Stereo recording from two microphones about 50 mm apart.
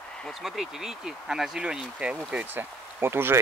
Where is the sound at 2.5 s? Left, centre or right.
Right.